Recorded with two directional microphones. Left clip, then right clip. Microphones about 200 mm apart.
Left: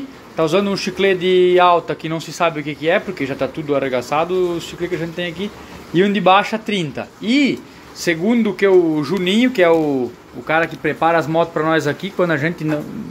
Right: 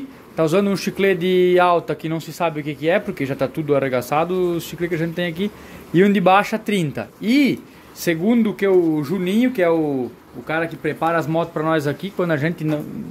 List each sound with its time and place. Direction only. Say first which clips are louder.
0.4 s speech: left 2 dB; 20° right (ahead or behind)